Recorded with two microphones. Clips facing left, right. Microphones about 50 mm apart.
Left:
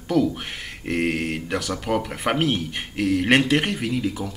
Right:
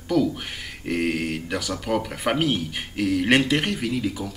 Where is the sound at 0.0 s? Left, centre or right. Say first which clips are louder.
Left 1 dB; centre.